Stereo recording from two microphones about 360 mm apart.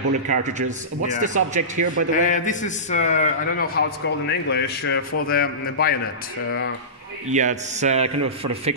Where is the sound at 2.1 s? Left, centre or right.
Left.